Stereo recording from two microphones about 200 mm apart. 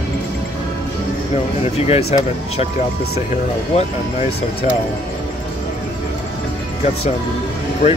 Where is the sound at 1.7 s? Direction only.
30° left (ahead or behind).